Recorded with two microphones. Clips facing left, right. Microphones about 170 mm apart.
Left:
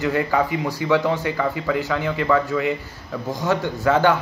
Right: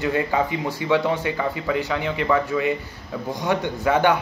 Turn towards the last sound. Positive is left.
turn(degrees=-20)  # may be behind; listen again after turning